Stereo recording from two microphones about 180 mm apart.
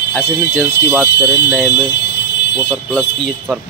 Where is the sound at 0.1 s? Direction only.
10° left (ahead or behind).